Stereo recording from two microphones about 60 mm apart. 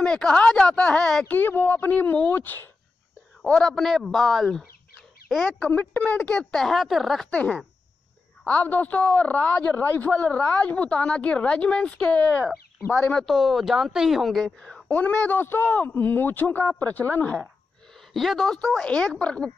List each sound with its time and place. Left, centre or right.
0.0 s speech: centre
1.2 s a man's voice: left
3.6 s speech: centre
5.6 s a woman's voice: left
6.5 s speech: centre
7.2 s a woman's voice: left
13.2 s speech: centre
14.9 s a man's voice: left
17.9 s a woman's voice: centre
18.8 s speech: centre